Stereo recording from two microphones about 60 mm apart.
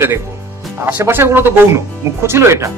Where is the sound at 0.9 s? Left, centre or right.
Right.